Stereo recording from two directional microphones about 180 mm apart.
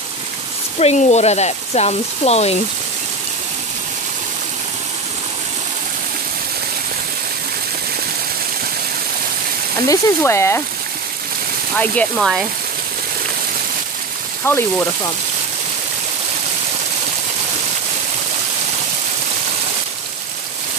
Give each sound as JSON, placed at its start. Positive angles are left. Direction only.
{"t": 0.7, "sound": "speech", "side_deg": 35}
{"t": 9.8, "sound": "speech", "side_deg": 15}
{"t": 11.8, "sound": "speech", "side_deg": 5}
{"t": 14.4, "sound": "speech", "side_deg": 15}